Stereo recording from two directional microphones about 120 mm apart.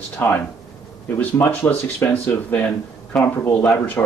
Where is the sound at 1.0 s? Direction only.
15° left (ahead or behind).